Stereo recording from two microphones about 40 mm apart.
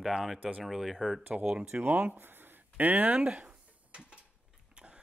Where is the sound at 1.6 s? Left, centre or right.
Right.